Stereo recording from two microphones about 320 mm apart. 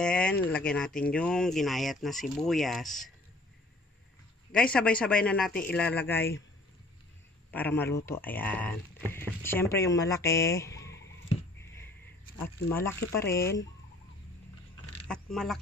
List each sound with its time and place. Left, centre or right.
0.0 s speech: centre
4.5 s speech: centre
7.5 s speech: centre
11.2 s a sound: centre
12.4 s speech: centre
15.0 s speech: centre